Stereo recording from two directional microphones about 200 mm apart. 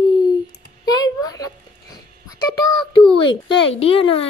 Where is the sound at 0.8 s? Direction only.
20° left (ahead or behind).